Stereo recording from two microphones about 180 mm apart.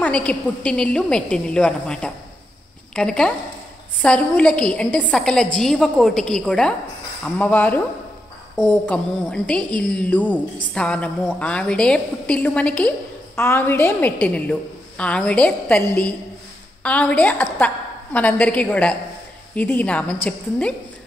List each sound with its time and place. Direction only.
0.0 s a woman's voice: 5° left (ahead or behind)